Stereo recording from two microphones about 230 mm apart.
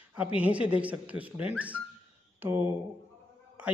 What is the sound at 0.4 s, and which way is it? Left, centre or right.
Speech, centre.